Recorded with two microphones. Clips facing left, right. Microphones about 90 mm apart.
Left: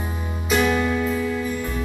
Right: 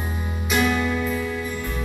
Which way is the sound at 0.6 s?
20° left (ahead or behind).